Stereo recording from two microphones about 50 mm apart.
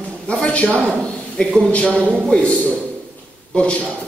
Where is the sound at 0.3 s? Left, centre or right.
Left.